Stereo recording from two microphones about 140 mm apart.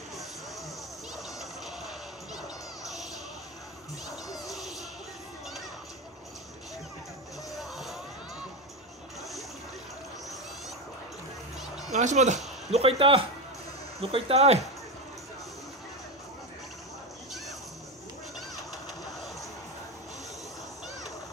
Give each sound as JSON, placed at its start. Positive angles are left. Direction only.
{"t": 4.3, "sound": "music", "side_deg": 0}
{"t": 7.5, "sound": "music", "side_deg": 0}
{"t": 11.9, "sound": "speech", "side_deg": -55}
{"t": 12.7, "sound": "speech", "side_deg": -40}